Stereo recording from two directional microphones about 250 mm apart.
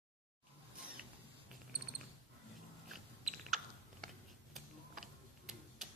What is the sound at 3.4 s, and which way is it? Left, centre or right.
Chewing, centre.